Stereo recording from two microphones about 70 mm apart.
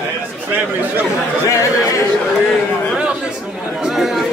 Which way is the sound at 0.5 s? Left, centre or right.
Right.